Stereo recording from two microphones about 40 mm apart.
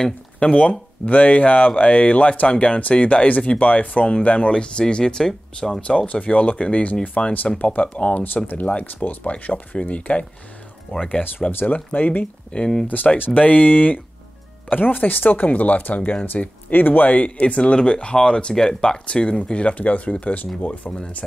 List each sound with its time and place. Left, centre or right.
0.4 s speech: left; by 5.8 s centre
5.8 s speech: left
12.5 s speech: centre
12.8 s speech: left
17.1 s speech: left